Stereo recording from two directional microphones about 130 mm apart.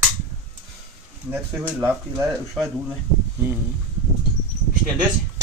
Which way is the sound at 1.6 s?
10° right (ahead or behind).